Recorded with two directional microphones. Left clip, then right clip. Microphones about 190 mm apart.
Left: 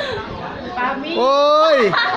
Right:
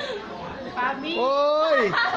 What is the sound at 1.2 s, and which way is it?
Speech, 20° left (ahead or behind).